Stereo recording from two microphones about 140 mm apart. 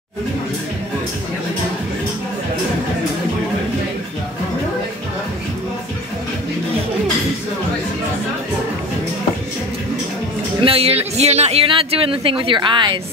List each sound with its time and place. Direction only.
10.6 s a woman's voice: 45° right (ahead or behind)